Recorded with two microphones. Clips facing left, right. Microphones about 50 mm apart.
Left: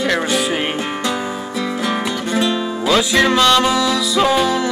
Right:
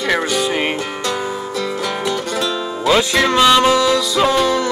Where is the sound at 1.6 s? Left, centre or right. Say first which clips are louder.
Left 3 dB; centre.